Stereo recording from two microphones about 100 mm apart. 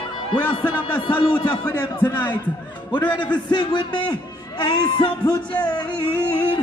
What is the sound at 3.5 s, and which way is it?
A man's voice, 50° left (ahead or behind).